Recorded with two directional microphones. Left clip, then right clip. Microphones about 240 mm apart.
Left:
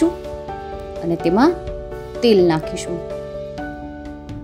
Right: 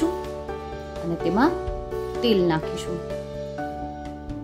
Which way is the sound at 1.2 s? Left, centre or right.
Left.